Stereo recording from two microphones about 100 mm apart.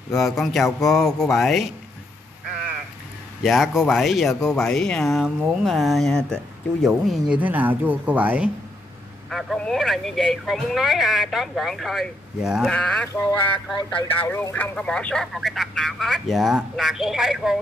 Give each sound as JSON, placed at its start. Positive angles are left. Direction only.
{"t": 0.2, "sound": "speech", "side_deg": 0}
{"t": 3.4, "sound": "speech", "side_deg": 0}
{"t": 6.9, "sound": "speech", "side_deg": -10}
{"t": 9.3, "sound": "speech", "side_deg": 0}
{"t": 12.6, "sound": "speech", "side_deg": 10}
{"t": 13.1, "sound": "speech", "side_deg": 30}
{"t": 13.7, "sound": "speech", "side_deg": 55}
{"t": 14.2, "sound": "speech", "side_deg": 20}